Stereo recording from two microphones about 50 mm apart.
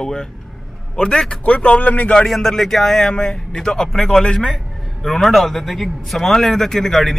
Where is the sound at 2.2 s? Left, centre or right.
Centre.